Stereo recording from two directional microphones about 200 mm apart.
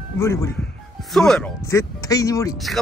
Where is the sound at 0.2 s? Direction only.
15° left (ahead or behind).